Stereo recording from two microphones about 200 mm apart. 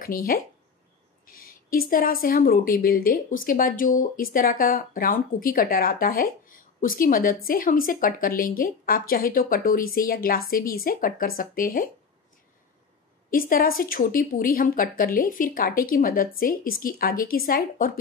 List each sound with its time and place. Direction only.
0.0 s speech: 45° left (ahead or behind)
13.3 s speech: 45° left (ahead or behind)